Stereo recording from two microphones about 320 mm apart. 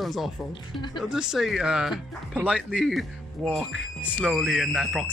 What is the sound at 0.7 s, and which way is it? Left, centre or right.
Speech, centre.